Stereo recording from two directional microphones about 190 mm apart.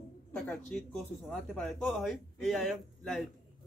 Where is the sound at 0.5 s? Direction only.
5° left (ahead or behind).